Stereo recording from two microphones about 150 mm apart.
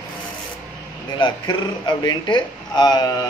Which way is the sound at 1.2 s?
30° left (ahead or behind).